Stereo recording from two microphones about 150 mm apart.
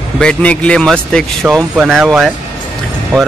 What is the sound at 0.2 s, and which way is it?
A man's voice, 5° left (ahead or behind).